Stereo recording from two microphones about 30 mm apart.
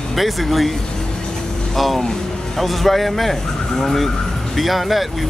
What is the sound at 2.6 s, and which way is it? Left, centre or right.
Speech, centre.